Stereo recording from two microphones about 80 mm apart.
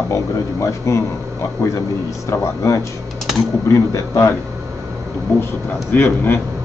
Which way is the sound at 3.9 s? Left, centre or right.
Left.